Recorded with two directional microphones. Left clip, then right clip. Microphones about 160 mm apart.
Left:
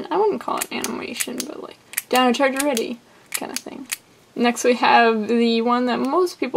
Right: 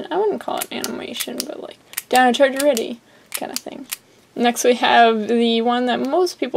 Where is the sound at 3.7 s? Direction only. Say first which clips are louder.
Even; 20° right (ahead or behind).